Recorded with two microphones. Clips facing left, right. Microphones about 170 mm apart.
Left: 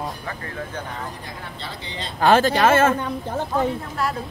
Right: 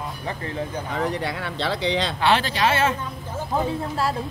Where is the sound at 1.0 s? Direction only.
80° right.